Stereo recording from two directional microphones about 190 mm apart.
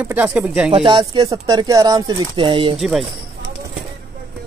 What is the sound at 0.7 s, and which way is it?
Speech, 25° right (ahead or behind).